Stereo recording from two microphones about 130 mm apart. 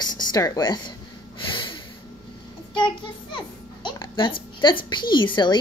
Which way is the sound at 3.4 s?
35° left (ahead or behind).